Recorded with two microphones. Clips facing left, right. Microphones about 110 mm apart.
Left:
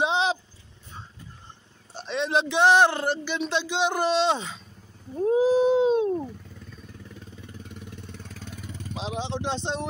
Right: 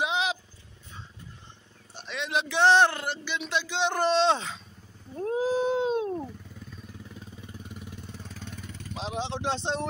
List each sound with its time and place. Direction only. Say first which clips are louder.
0.0 s vehicle: left 4 dB; 30° left (ahead or behind)
2.0 s a sound: left 5 dB; 35° left (ahead or behind)
2.4 s speech: left 1 dB; 15° left (ahead or behind)
3.0 s a woman's voice: left 6 dB; 40° left (ahead or behind)
3.6 s speech: even; 15° left (ahead or behind)
5.1 s cat: left 6 dB; 5° left (ahead or behind)
7.6 s vehicle: left 1 dB; 5° right (ahead or behind)